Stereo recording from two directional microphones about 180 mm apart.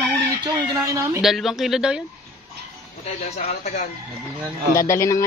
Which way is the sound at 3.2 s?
40° left (ahead or behind).